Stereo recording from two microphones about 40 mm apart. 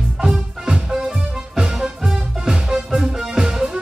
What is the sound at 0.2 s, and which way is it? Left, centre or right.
Music, centre.